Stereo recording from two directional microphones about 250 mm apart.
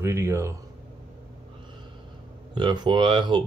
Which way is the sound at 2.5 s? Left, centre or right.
Centre.